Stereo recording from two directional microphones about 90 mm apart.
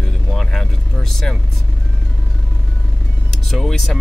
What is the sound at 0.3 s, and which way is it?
Vehicle, 5° left (ahead or behind).